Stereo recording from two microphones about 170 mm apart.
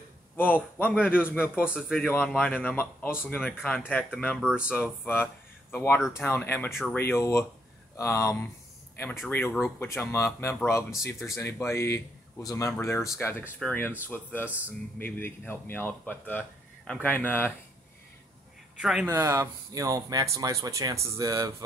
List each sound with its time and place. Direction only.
0.4 s speech: 10° left (ahead or behind)
1.5 s speech: 5° right (ahead or behind)
2.0 s speech: 10° left (ahead or behind)
4.4 s speech: centre (ahead or behind)
4.6 s speech: 10° left (ahead or behind)
6.7 s speech: centre (ahead or behind)
7.0 s speech: 15° left (ahead or behind)
18.8 s speech: 5° right (ahead or behind)